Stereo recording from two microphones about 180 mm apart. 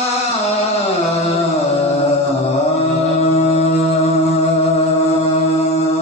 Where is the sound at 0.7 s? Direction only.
35° left (ahead or behind).